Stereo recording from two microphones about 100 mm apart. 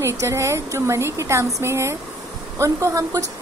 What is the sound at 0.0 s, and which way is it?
Speech, 30° right (ahead or behind).